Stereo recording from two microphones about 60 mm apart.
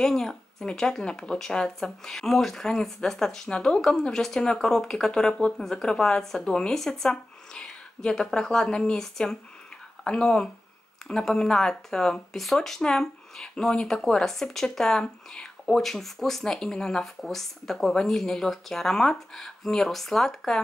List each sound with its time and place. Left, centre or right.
0.0 s speech: centre